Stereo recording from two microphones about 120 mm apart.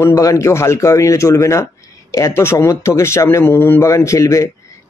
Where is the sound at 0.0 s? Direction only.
25° left (ahead or behind).